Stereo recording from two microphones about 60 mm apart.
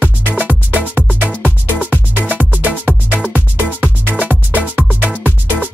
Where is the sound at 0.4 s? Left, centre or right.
Right.